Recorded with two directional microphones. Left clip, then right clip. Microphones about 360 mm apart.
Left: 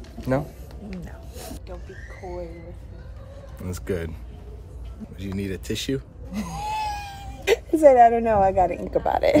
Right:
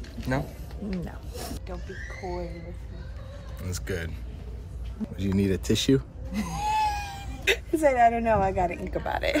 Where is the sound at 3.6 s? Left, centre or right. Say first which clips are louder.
Left 4 dB; centre.